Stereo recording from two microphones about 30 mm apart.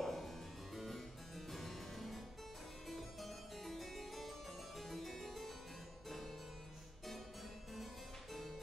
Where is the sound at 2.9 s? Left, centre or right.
Centre.